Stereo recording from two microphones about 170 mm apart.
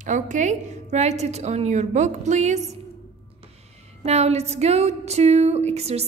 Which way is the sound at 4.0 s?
40° right (ahead or behind).